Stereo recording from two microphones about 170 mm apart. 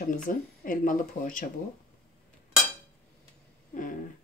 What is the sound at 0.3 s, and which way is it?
Speech, 55° left (ahead or behind).